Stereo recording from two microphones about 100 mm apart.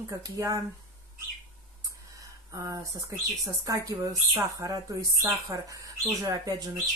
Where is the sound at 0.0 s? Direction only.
35° right (ahead or behind).